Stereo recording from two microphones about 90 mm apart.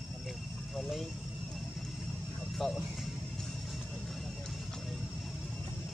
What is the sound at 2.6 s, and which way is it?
Speech, centre (ahead or behind).